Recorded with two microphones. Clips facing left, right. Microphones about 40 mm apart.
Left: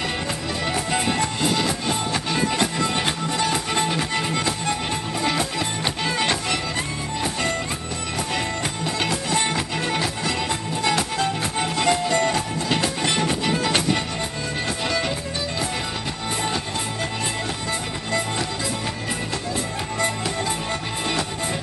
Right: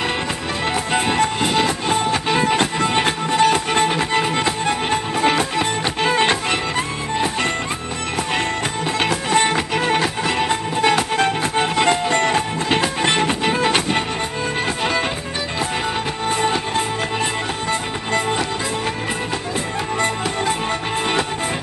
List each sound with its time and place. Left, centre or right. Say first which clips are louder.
0.9 s music: right 7 dB; right
9.0 s music: right 6 dB; right